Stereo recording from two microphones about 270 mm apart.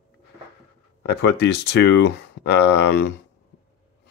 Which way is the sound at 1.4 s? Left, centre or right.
Left.